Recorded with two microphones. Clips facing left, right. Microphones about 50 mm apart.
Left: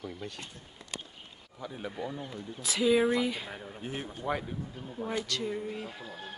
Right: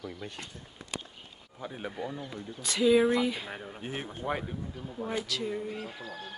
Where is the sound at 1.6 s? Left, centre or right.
Centre.